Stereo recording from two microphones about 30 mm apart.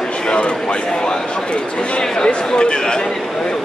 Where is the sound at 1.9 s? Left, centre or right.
Left.